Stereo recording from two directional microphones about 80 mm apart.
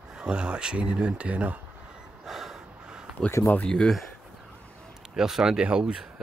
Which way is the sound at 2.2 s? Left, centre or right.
Centre.